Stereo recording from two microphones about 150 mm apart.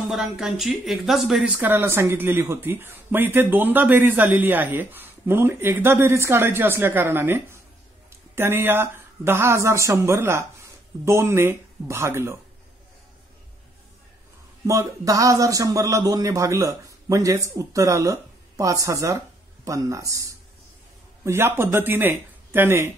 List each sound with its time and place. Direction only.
0.1 s speech: centre (ahead or behind)
1.6 s speech: 15° right (ahead or behind)
14.7 s a man's voice: 20° right (ahead or behind)